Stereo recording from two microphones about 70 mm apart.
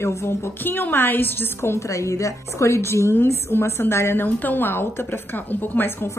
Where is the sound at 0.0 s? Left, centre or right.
Left.